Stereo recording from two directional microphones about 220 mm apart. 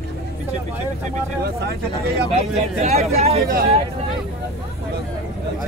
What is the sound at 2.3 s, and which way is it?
Speech, 30° right (ahead or behind).